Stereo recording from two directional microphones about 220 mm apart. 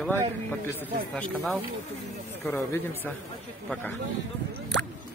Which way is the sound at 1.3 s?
5° right (ahead or behind).